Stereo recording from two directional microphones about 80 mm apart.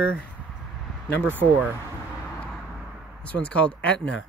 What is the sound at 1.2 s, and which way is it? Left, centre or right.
Speech, right.